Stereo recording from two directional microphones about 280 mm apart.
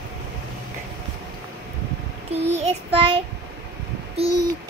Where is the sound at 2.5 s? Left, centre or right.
Centre.